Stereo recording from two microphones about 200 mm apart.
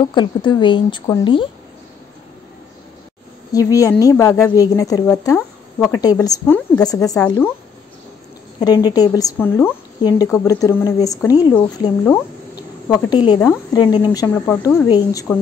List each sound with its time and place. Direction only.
0.1 s speech: 25° left (ahead or behind)
3.5 s speech: 15° left (ahead or behind)
8.5 s speech: 20° left (ahead or behind)